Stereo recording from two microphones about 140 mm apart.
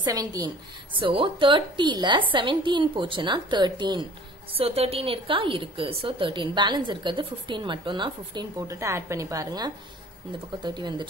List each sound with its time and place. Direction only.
0.0 s a woman's voice: 25° right (ahead or behind)
0.9 s a woman's voice: 35° right (ahead or behind)
4.6 s a woman's voice: 45° right (ahead or behind)